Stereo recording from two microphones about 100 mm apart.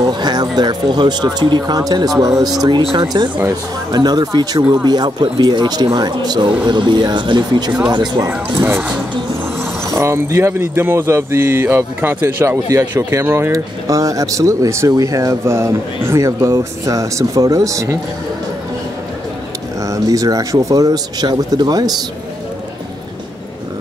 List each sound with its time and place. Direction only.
0.0 s speech: 45° right (ahead or behind)
8.5 s speech: 25° right (ahead or behind)
9.8 s speech: 30° right (ahead or behind)
19.9 s speech: 35° right (ahead or behind)